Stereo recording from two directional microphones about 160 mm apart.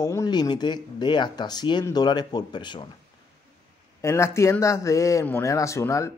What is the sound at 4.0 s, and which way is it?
A man's voice, 15° left (ahead or behind).